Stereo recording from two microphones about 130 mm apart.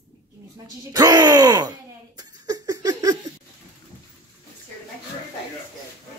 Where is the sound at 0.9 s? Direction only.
30° right (ahead or behind).